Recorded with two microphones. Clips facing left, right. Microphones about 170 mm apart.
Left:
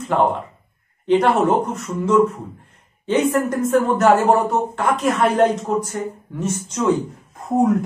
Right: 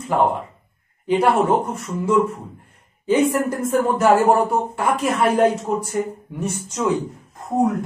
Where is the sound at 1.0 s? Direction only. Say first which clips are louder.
Left 2 dB; 5° right (ahead or behind).